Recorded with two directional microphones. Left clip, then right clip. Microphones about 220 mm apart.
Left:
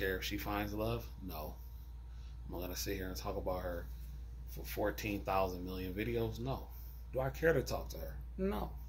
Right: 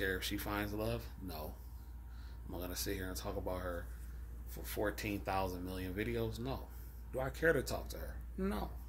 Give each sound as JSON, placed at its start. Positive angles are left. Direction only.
{"t": 0.0, "sound": "speech", "side_deg": -15}
{"t": 2.5, "sound": "speech", "side_deg": -10}